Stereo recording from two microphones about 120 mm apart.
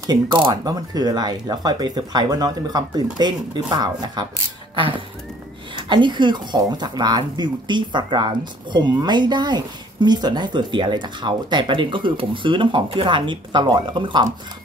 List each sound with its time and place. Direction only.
0.3 s speech: 40° right (ahead or behind)